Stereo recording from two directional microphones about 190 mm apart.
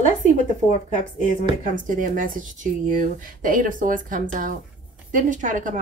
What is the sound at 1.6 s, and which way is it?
Speech, 45° right (ahead or behind).